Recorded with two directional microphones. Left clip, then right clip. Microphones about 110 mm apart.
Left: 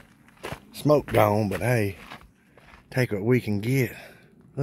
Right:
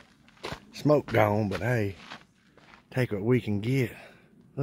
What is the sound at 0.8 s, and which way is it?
Speech, 10° right (ahead or behind).